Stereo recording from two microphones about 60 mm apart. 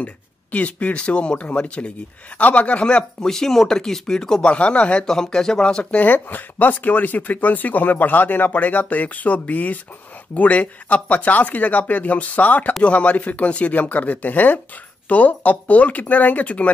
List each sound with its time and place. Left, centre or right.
0.0 s speech: left
5.0 s speech: centre
5.9 s speech: left